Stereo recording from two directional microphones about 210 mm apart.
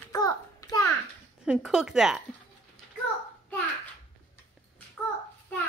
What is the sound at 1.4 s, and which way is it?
Speech, 5° right (ahead or behind).